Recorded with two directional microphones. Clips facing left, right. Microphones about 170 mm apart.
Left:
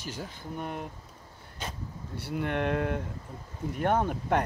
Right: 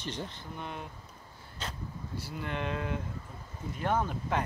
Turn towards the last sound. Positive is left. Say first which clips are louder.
# left 4 dB
turn(degrees=55)  # may be behind; listen again after turning